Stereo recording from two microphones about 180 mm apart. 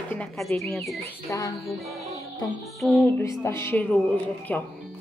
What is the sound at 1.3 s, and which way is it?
Speech, 15° left (ahead or behind).